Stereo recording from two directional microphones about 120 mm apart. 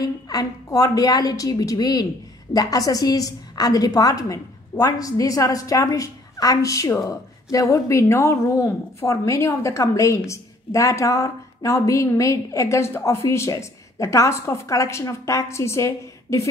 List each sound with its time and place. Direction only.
0.0 s a woman's voice: 30° left (ahead or behind)